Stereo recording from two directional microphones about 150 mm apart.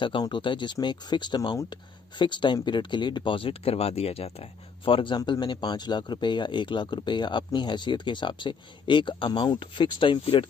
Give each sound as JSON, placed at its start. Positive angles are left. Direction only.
{"t": 0.0, "sound": "speech", "side_deg": 35}